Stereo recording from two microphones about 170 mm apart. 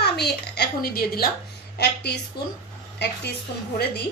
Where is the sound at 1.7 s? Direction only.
75° left (ahead or behind).